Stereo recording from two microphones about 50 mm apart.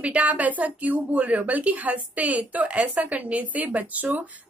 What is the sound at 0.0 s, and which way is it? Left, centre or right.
A woman's voice, right.